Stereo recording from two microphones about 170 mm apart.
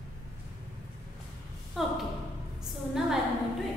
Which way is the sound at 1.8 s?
Centre (ahead or behind).